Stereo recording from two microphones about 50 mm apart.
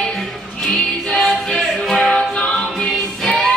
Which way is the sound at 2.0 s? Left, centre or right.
Left.